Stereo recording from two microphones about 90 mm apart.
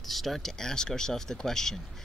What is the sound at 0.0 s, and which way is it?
Speech, centre (ahead or behind).